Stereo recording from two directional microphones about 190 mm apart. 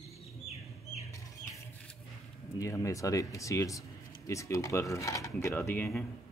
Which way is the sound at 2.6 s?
15° left (ahead or behind).